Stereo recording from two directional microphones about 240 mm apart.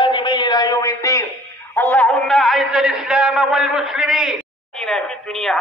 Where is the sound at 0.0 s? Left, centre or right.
Centre.